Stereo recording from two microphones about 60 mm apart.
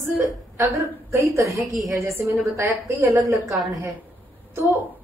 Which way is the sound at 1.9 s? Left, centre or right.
Right.